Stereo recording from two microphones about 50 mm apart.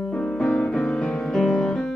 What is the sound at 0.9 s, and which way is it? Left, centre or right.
Music, centre.